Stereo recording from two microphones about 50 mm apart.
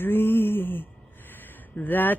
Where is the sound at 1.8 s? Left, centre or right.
Left.